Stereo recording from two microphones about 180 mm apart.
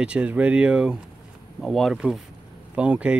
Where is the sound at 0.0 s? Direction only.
5° right (ahead or behind).